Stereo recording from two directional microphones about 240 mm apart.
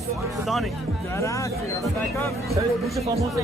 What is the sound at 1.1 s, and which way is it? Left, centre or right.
Speech, centre.